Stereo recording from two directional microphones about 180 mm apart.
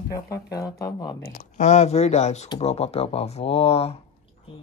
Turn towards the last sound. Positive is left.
turn(degrees=35)  # may be behind; listen again after turning